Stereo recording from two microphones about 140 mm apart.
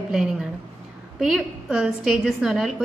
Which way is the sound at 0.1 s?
5° right (ahead or behind).